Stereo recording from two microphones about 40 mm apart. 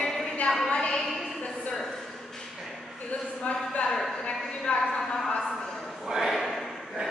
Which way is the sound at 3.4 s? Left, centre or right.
Left.